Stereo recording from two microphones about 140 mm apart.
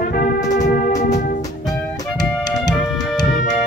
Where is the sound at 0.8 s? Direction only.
60° left (ahead or behind).